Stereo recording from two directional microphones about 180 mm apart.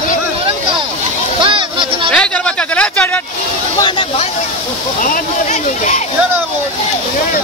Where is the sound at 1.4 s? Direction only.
25° right (ahead or behind).